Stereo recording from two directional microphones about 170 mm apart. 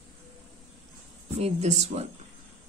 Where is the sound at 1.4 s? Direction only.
40° right (ahead or behind).